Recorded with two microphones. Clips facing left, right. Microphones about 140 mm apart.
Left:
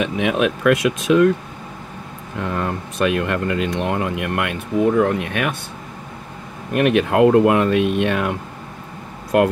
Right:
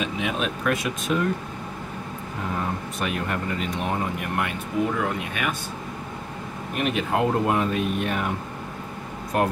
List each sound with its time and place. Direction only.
0.0 s speech: 65° left (ahead or behind); by 1.3 s 90° left
2.4 s speech: 90° left
4.9 s speech: 55° left (ahead or behind)
6.7 s speech: 65° left (ahead or behind); by 8.4 s 90° left